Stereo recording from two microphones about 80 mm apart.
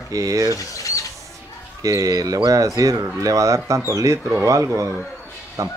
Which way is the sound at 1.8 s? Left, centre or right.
Right.